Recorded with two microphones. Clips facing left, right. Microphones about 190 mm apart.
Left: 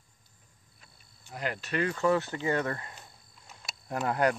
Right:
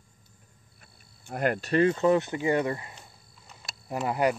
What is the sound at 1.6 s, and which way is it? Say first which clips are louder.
Speech: right 6 dB; 30° right (ahead or behind).